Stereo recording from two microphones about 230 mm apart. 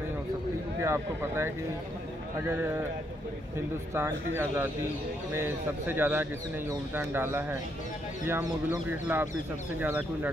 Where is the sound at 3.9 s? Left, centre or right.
Centre.